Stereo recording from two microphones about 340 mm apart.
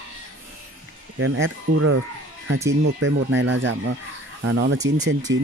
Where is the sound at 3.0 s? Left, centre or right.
Right.